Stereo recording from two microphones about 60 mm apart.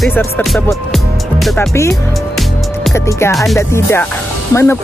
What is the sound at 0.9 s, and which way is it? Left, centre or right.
Music, centre.